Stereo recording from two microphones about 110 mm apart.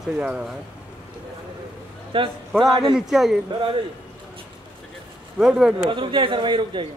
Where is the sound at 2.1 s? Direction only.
55° right (ahead or behind).